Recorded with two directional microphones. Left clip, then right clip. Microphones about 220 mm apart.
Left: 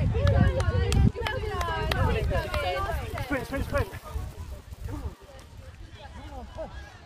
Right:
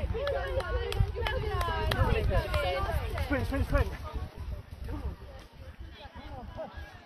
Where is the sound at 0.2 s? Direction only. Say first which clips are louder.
Left 3 dB; 15° left (ahead or behind); by 5.0 s 50° left (ahead or behind).